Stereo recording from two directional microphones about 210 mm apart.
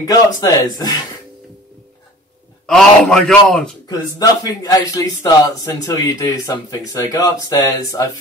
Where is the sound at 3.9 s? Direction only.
15° left (ahead or behind).